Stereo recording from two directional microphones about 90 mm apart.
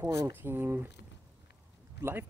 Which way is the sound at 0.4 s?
25° right (ahead or behind).